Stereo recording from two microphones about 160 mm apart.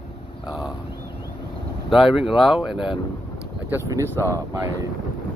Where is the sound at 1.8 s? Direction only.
5° right (ahead or behind).